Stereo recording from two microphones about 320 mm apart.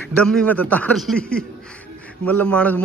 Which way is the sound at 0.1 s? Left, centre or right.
Centre.